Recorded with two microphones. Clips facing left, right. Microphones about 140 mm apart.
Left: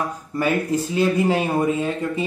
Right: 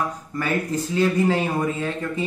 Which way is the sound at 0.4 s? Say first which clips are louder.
Left 4 dB; 15° left (ahead or behind).